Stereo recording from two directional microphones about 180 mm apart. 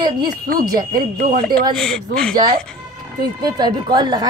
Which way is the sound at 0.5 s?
50° right (ahead or behind).